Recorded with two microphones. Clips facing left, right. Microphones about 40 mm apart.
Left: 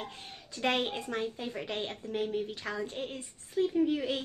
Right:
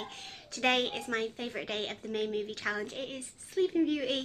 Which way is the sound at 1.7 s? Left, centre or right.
Right.